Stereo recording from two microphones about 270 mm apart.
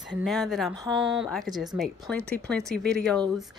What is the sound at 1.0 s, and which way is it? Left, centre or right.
Speech, centre.